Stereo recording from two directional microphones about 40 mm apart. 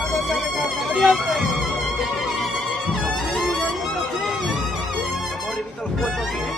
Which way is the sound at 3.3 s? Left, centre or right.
Centre.